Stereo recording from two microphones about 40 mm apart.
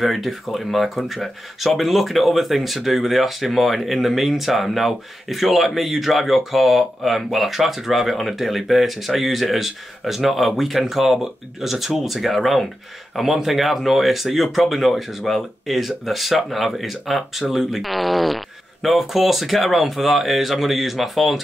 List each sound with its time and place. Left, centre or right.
0.0 s speech: centre